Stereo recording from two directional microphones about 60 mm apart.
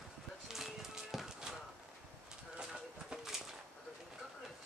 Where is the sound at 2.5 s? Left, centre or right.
Centre.